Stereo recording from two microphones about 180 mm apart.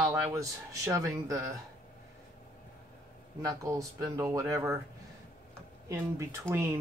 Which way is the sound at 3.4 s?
20° right (ahead or behind).